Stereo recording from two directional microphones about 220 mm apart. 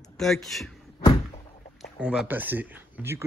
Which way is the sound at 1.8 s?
5° right (ahead or behind).